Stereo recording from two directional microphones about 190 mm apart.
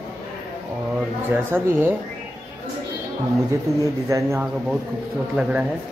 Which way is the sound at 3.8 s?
15° right (ahead or behind).